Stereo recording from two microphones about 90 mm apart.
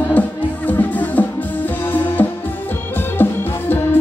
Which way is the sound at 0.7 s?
20° left (ahead or behind).